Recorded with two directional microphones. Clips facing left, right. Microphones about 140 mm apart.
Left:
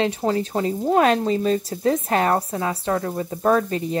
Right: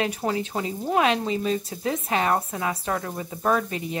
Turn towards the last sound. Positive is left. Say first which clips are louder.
# left 5 dB
turn(degrees=35)  # may be behind; listen again after turning